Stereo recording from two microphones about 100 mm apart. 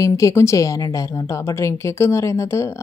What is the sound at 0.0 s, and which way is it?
A woman's voice, 30° left (ahead or behind).